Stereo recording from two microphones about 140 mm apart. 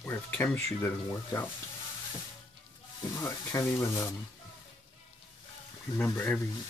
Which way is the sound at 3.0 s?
20° left (ahead or behind).